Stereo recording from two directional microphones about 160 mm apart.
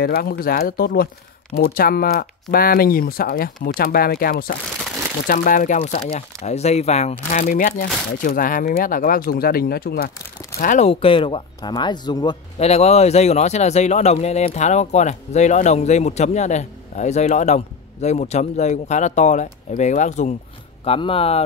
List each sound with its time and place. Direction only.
0.0 s speech: 70° left (ahead or behind)
5.3 s speech: 55° left (ahead or behind); by 10.1 s 70° left (ahead or behind)
10.6 s speech: 50° left (ahead or behind); by 12.4 s 25° left (ahead or behind)
12.5 s speech: 40° left (ahead or behind)